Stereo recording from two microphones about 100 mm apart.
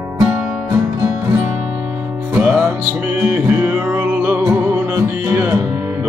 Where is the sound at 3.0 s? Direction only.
15° right (ahead or behind).